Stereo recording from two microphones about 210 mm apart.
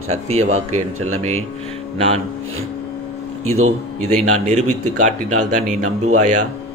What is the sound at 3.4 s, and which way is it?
Speech, 85° right.